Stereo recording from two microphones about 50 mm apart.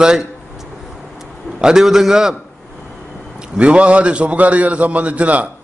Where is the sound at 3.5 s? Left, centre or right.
Right.